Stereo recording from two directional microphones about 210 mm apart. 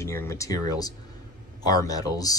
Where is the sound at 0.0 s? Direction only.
15° left (ahead or behind).